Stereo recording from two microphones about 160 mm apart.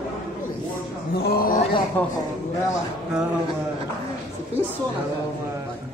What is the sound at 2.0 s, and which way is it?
Speech, 10° left (ahead or behind).